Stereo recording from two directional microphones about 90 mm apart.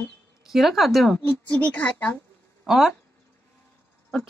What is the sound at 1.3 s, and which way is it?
Speech, 15° left (ahead or behind).